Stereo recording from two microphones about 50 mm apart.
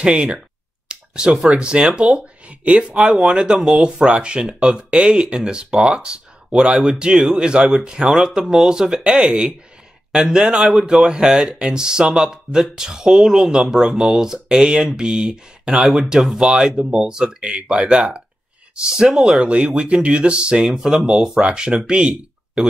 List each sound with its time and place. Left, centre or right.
0.0 s speech: right
0.8 s a sound: centre
1.5 s speech: centre